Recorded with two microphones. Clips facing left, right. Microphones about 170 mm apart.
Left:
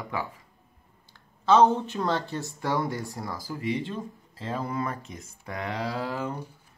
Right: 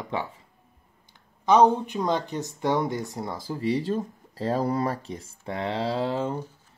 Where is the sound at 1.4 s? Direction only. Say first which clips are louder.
Right 1 dB; 15° right (ahead or behind).